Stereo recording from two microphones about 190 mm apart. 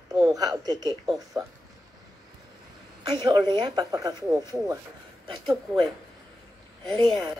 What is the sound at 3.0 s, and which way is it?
A woman's voice, 20° right (ahead or behind).